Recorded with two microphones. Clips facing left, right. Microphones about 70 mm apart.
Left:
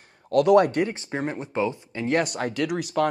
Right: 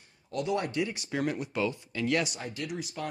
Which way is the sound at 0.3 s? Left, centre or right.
Left.